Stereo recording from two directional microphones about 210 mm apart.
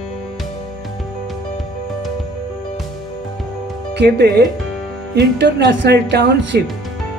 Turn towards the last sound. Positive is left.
turn(degrees=-50)  # may be behind; listen again after turning